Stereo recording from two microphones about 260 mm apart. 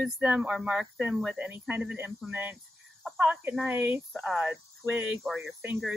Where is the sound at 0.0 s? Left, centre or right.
Centre.